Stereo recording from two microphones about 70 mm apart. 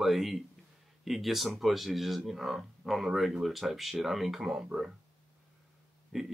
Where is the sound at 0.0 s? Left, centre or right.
Centre.